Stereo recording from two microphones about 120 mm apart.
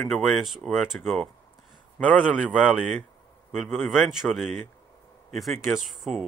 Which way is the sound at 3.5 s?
5° right (ahead or behind).